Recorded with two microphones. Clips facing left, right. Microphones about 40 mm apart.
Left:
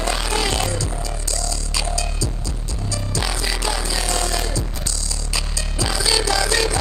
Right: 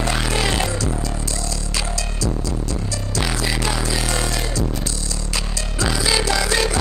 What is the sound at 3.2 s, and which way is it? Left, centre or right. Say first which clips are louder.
Music: right 3 dB; centre.